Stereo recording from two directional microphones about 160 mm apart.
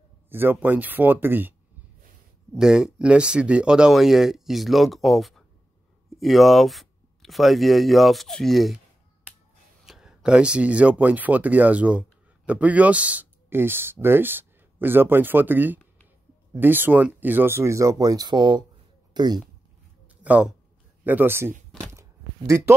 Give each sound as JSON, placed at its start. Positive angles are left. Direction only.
{"t": 0.3, "sound": "speech", "side_deg": -15}
{"t": 2.5, "sound": "speech", "side_deg": -5}
{"t": 9.8, "sound": "speech", "side_deg": -5}
{"t": 20.2, "sound": "speech", "side_deg": -10}